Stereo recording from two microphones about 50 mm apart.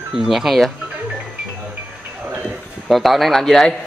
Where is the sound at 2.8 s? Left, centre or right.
Centre.